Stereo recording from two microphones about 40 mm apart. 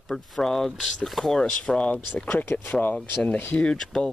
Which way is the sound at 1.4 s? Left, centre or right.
Left.